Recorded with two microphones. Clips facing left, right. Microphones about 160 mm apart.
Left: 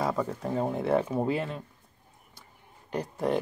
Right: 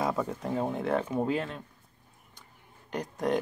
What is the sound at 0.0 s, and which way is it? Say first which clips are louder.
Speech: left 1 dB; centre (ahead or behind).